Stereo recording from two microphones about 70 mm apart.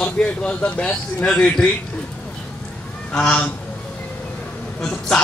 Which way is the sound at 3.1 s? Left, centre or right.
Centre.